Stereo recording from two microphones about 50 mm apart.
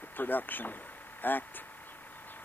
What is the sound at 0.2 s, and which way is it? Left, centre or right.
Speech, left.